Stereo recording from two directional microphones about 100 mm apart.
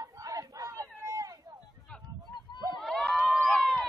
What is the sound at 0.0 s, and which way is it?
Crowd, 35° right (ahead or behind).